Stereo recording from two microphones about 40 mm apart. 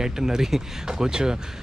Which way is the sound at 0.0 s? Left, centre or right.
Centre.